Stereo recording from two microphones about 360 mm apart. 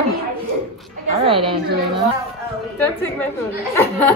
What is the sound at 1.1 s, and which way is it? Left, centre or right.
Speech, centre.